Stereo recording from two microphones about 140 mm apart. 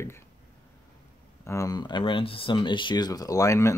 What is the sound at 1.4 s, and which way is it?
Speech, 20° left (ahead or behind).